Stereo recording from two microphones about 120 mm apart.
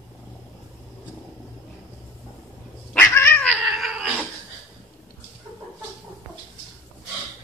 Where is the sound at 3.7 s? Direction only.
5° right (ahead or behind).